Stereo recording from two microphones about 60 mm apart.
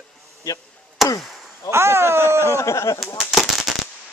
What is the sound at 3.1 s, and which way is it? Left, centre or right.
Firecracker, centre.